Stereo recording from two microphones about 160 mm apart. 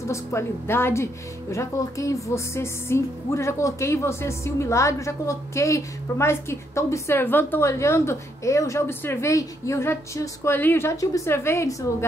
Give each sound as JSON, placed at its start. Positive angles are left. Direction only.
{"t": 0.0, "sound": "speech", "side_deg": 15}